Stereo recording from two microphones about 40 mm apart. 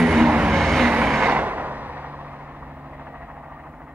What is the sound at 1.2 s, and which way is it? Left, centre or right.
Vehicle, right.